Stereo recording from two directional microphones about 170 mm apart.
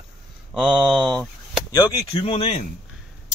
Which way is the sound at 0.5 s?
5° right (ahead or behind).